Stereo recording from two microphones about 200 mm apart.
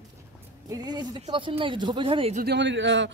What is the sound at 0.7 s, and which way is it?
Speech, 20° right (ahead or behind).